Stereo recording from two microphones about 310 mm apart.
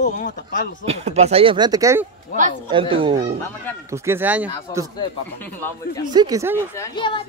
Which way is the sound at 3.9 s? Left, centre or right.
Centre.